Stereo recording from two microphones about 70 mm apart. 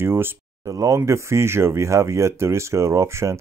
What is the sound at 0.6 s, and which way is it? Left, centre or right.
Speech, right.